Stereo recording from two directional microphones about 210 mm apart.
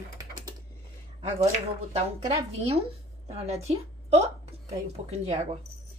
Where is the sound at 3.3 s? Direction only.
30° right (ahead or behind).